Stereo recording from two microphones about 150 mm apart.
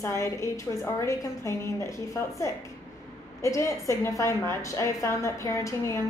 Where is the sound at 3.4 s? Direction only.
20° left (ahead or behind).